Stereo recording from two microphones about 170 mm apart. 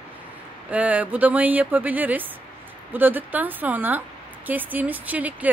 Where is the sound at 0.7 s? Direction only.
10° right (ahead or behind).